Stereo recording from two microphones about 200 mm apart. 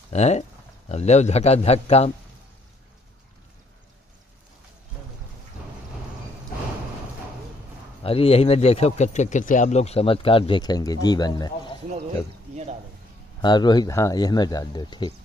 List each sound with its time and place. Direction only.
0.1 s a man's voice: 35° left (ahead or behind)
8.0 s speech: 30° left (ahead or behind)
13.4 s speech: 20° left (ahead or behind)